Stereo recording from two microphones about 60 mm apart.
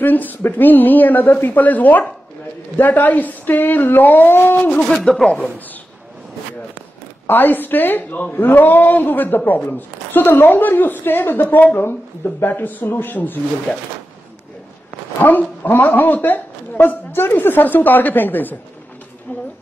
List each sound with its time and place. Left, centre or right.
0.0 s speech: left
5.1 s a man's voice: centre
7.2 s speech: left
15.2 s speech: left